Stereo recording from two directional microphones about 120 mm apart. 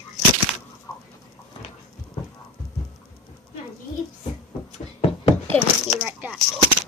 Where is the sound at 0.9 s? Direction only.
30° left (ahead or behind).